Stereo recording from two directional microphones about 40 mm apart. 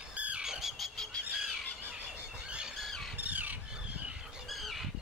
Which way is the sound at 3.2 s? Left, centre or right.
Right.